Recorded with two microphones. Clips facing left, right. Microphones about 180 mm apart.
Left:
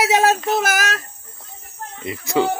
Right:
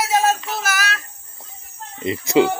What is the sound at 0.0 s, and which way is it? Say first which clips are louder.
Child singing: left 2 dB; 70° left (ahead or behind).